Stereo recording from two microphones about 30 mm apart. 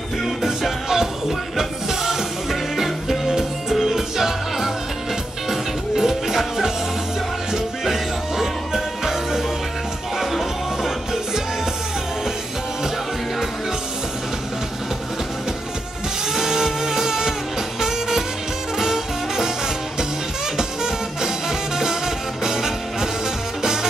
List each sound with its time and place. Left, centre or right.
0.4 s music: centre
16.3 s music: centre
20.5 s music: centre